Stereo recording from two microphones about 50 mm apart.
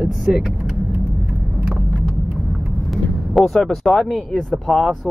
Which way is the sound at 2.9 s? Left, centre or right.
Centre.